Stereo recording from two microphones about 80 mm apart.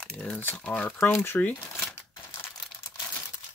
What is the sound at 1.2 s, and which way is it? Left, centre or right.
Speech, left.